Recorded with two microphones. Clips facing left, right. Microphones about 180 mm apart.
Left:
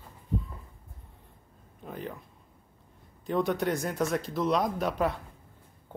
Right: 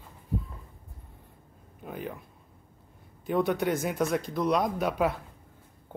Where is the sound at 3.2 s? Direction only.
Centre (ahead or behind).